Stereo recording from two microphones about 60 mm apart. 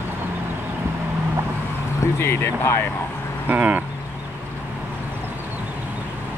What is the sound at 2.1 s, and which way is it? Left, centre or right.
Speech, left.